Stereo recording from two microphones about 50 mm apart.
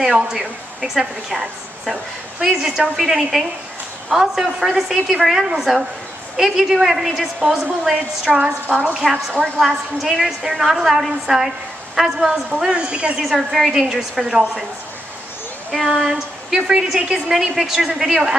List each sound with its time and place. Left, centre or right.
0.0 s a woman's voice: centre
7.9 s a woman's voice: centre
9.0 s a woman's voice: centre
12.7 s a woman's voice: right
13.2 s a woman's voice: centre
15.7 s a woman's voice: centre